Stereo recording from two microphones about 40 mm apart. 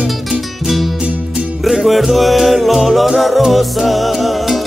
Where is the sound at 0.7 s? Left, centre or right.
Centre.